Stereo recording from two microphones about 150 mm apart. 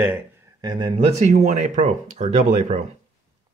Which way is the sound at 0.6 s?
30° right (ahead or behind).